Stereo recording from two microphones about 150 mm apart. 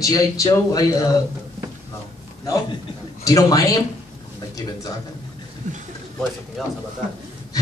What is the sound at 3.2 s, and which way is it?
Speech, 25° left (ahead or behind).